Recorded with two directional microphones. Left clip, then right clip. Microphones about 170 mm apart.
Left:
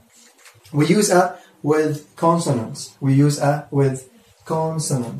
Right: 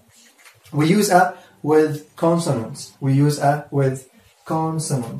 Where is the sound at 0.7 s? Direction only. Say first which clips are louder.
Even; 20° right (ahead or behind).